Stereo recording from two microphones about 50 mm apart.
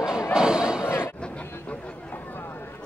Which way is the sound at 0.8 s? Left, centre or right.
Left.